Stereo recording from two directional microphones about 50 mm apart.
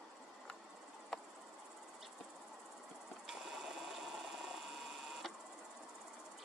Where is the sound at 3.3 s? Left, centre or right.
Centre.